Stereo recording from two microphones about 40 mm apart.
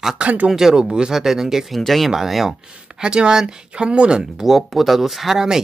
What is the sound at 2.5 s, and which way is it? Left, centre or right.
Speech, right.